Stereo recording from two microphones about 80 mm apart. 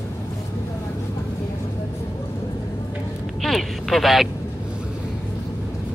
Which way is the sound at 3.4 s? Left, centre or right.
Centre.